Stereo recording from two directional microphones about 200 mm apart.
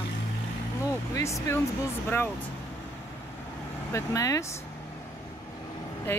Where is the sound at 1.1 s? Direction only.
15° left (ahead or behind).